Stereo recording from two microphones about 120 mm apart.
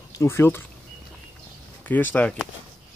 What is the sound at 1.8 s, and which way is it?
Speech, 15° left (ahead or behind).